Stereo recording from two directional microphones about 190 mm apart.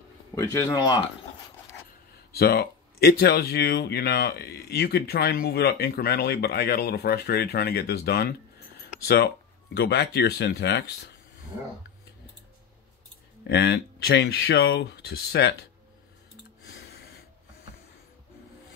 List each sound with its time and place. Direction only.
0.4 s speech: 15° left (ahead or behind)
2.3 s speech: 55° left (ahead or behind)
13.4 s speech: 60° left (ahead or behind)
16.7 s music: 60° left (ahead or behind)